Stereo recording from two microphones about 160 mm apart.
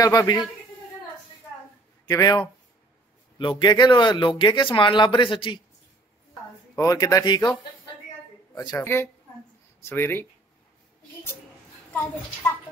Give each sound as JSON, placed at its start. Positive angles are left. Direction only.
{"t": 0.0, "sound": "speech", "side_deg": 20}
{"t": 2.0, "sound": "speech", "side_deg": 25}
{"t": 6.7, "sound": "speech", "side_deg": 20}
{"t": 8.5, "sound": "speech", "side_deg": 20}
{"t": 12.4, "sound": "speech", "side_deg": 10}